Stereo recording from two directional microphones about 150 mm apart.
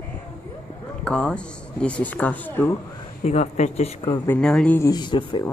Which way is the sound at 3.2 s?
50° left (ahead or behind).